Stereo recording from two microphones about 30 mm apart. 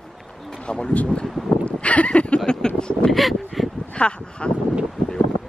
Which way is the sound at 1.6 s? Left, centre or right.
Left.